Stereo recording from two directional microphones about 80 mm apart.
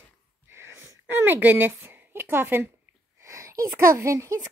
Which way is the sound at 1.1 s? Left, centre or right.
Right.